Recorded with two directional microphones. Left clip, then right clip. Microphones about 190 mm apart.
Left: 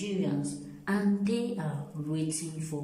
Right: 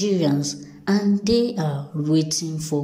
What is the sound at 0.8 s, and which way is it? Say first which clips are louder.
A woman's voice: right 9 dB; 25° right (ahead or behind).